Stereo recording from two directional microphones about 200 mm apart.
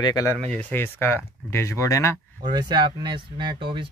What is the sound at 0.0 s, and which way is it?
Speech, 15° left (ahead or behind).